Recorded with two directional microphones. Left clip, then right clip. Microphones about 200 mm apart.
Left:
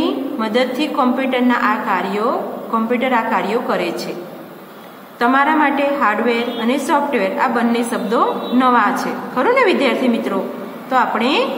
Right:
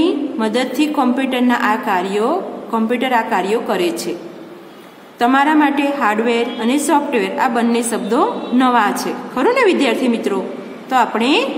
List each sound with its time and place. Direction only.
0.0 s a woman's voice: 60° right (ahead or behind)
5.2 s a woman's voice: 55° right (ahead or behind)